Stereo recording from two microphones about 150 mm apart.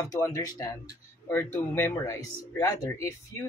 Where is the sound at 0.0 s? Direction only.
20° left (ahead or behind).